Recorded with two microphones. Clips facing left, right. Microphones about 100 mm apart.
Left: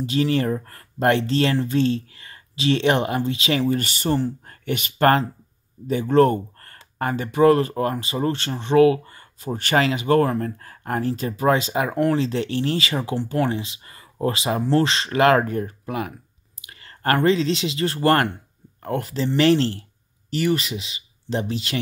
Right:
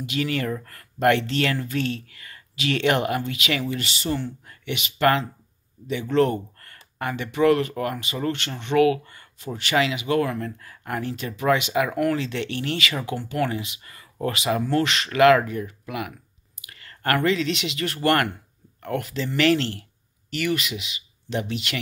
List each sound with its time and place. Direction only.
0.0 s speech: 30° left (ahead or behind)
9.6 s speech: 45° left (ahead or behind)